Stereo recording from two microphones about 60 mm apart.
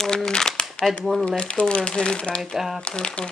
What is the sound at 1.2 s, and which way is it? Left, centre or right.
Speech, centre.